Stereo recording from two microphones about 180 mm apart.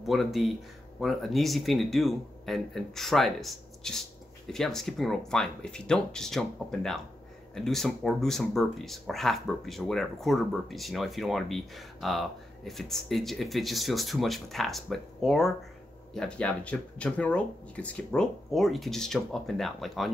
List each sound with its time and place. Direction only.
0.0 s speech: centre (ahead or behind)